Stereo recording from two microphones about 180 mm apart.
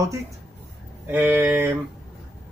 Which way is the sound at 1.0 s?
10° right (ahead or behind).